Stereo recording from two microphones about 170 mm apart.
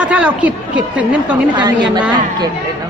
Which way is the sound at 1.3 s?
25° right (ahead or behind).